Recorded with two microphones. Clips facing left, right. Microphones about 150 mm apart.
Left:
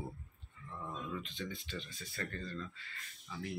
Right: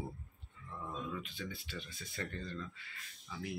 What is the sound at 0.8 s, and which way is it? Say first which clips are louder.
Speech: even; 5° right (ahead or behind).